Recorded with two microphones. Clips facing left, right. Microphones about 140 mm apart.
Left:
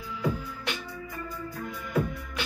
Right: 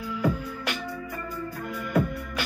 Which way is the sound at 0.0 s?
65° right (ahead or behind).